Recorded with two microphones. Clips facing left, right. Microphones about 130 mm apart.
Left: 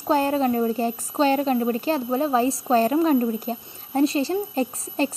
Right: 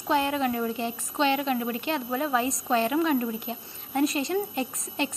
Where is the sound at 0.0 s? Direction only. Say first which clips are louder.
Left 4 dB; 35° left (ahead or behind).